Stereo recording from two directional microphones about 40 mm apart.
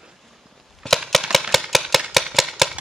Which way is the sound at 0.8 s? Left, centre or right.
Centre.